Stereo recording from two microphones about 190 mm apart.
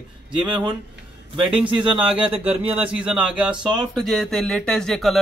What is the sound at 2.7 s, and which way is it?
Speech, 5° right (ahead or behind).